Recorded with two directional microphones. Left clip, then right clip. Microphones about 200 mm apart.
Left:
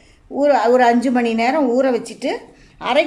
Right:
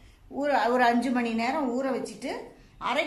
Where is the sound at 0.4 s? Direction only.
30° left (ahead or behind).